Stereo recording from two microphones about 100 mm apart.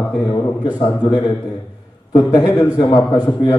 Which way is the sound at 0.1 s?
45° left (ahead or behind).